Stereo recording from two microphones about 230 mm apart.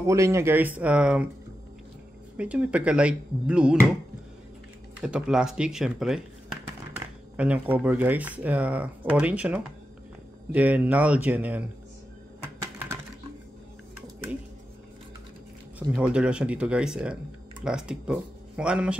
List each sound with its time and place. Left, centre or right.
0.0 s speech: centre
2.3 s speech: centre
5.0 s speech: centre
7.3 s speech: centre
12.7 s typing: centre
16.0 s speech: centre